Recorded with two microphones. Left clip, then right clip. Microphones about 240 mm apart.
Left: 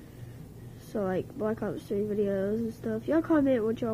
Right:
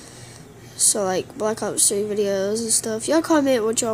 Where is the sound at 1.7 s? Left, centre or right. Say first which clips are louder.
Right 9 dB; right.